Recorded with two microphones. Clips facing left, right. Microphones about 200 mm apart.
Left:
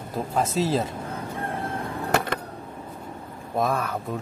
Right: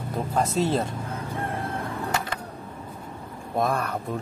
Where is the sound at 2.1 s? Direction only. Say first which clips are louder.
Left 9 dB; 60° left (ahead or behind).